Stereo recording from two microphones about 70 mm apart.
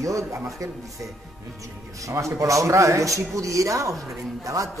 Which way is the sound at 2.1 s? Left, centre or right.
Right.